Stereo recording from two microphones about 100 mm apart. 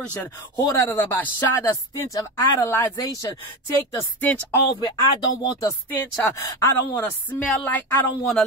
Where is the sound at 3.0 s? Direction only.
40° left (ahead or behind).